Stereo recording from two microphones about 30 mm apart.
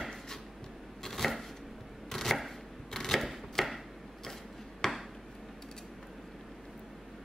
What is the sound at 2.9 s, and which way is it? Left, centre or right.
Camera, centre.